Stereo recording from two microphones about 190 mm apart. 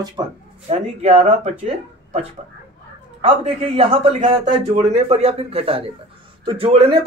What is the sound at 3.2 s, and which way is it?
A man's voice, 30° right (ahead or behind).